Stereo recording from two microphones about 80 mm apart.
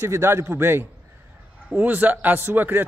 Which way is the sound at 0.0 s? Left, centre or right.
Right.